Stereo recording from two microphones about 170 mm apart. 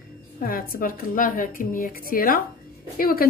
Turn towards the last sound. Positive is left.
turn(degrees=60)  # may be behind; listen again after turning